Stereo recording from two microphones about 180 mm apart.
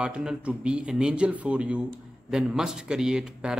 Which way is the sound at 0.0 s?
5° right (ahead or behind).